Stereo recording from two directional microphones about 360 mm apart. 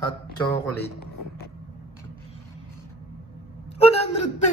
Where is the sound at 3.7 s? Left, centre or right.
Centre.